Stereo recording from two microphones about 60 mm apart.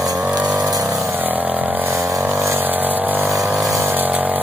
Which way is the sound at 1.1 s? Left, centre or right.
Right.